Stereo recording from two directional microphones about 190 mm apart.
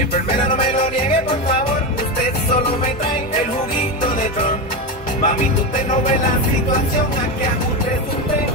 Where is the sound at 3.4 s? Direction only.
45° left (ahead or behind).